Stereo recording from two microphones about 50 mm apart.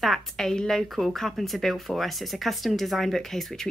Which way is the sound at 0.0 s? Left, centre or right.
Centre.